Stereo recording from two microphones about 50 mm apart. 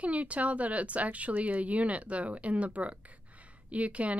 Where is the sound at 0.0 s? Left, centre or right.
Right.